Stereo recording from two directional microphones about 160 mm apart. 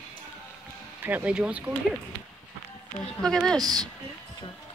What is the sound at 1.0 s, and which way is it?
Speech, 10° right (ahead or behind).